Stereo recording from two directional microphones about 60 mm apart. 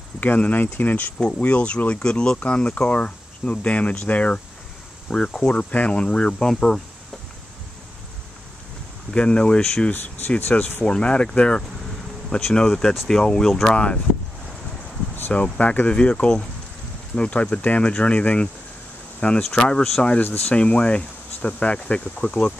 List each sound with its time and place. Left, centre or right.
0.2 s speech: left; by 6.8 s centre
9.1 s speech: centre
9.9 s speech: left
10.8 s speech: centre
15.3 s speech: centre
20.2 s speech: left